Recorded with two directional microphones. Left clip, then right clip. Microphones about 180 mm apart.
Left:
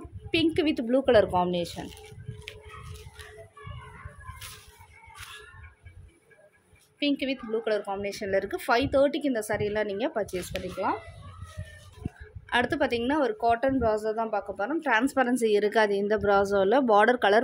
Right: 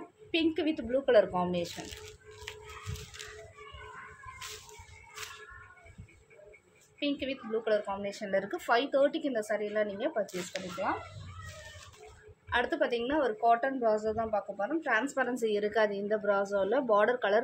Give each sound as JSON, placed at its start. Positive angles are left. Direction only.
{"t": 0.3, "sound": "a woman's voice", "side_deg": 55}
{"t": 7.0, "sound": "speech", "side_deg": 50}
{"t": 12.4, "sound": "a woman's voice", "side_deg": 50}